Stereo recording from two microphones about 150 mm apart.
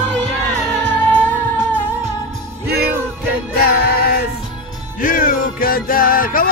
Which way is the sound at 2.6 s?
90° right.